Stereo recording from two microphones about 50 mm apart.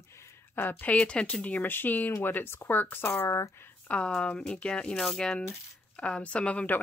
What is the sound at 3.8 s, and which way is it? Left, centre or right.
Speech, left.